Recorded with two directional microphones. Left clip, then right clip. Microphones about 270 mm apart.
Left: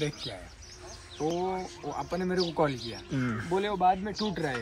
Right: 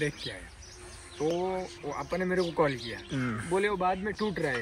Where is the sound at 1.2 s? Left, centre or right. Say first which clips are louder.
Right 1 dB; centre.